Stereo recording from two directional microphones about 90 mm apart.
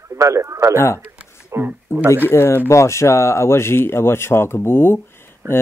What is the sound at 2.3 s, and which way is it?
Speech, 25° left (ahead or behind).